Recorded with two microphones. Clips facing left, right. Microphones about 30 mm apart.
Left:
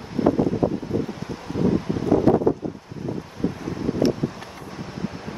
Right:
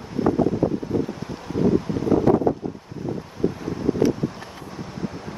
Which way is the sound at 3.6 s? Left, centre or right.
Centre.